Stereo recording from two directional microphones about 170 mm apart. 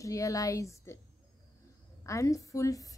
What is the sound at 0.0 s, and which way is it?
Speech, 20° left (ahead or behind).